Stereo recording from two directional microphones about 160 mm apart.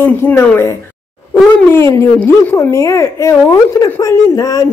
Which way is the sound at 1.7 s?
15° left (ahead or behind).